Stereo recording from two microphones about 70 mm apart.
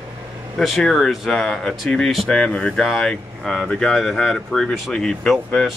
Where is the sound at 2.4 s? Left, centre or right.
Centre.